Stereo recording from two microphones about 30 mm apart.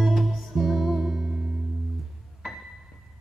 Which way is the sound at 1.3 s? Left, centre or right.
Right.